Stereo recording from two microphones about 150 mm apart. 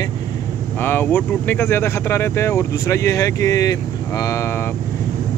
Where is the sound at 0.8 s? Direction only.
15° left (ahead or behind).